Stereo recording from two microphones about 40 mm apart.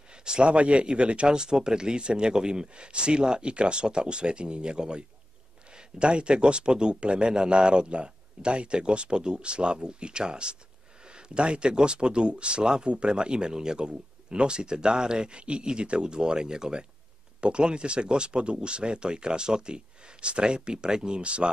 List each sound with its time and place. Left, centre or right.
0.1 s speech: right